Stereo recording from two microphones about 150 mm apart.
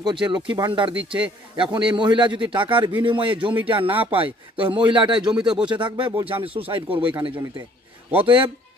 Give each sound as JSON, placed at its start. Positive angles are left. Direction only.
{"t": 0.0, "sound": "speech", "side_deg": -30}
{"t": 0.9, "sound": "a man's voice", "side_deg": -10}
{"t": 1.6, "sound": "speech", "side_deg": -35}